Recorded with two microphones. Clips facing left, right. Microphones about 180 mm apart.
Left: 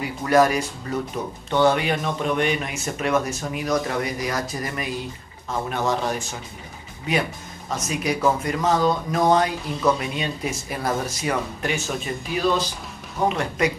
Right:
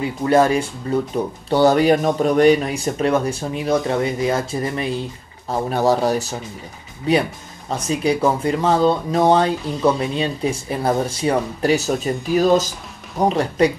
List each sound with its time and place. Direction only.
0.2 s speech: 30° right (ahead or behind)